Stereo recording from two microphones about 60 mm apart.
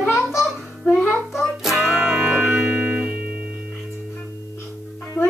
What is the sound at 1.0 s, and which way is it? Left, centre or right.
Music, centre.